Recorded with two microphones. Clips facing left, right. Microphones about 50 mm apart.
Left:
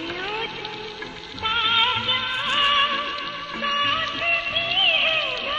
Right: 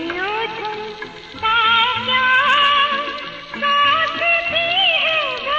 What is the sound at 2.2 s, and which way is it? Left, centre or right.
Music of bollywood, right.